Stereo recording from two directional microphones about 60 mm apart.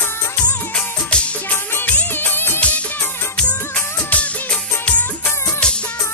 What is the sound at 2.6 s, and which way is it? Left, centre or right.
Music, left.